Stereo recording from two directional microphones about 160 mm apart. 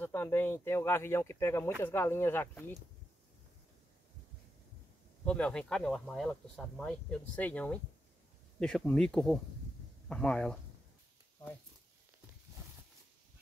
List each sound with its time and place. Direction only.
0.0 s speech: 15° left (ahead or behind)
5.2 s speech: 5° left (ahead or behind)